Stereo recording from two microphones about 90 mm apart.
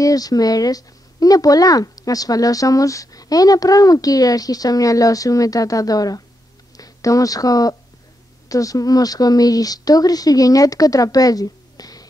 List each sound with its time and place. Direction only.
0.0 s speech: 45° left (ahead or behind)